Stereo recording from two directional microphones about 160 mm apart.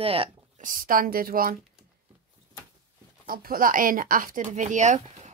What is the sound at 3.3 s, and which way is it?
A woman's voice, 65° right (ahead or behind).